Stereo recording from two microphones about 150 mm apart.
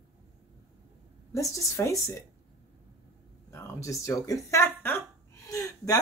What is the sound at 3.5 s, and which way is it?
Speech, 20° left (ahead or behind).